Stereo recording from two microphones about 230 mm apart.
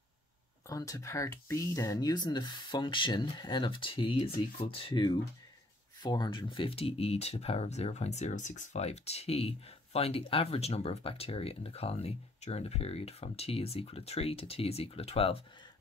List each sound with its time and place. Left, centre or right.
0.7 s speech: centre